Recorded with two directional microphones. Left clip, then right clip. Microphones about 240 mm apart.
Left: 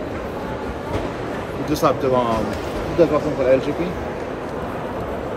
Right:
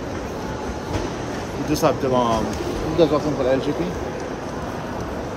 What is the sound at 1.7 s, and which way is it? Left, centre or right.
Speech, right.